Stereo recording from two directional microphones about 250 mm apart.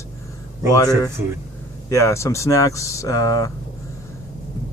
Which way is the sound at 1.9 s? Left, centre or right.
Centre.